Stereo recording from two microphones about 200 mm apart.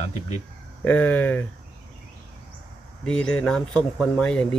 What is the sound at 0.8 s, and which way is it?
Speech, 10° left (ahead or behind).